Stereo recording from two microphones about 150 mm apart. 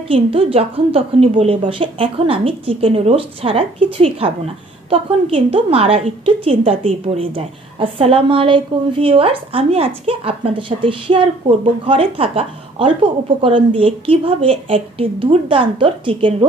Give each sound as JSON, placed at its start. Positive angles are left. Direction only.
{"t": 0.1, "sound": "a woman's voice", "side_deg": -40}